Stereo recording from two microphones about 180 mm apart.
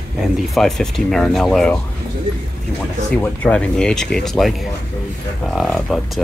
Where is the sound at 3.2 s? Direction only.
5° left (ahead or behind).